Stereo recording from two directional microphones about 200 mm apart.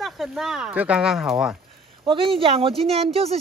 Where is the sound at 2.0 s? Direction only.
25° right (ahead or behind).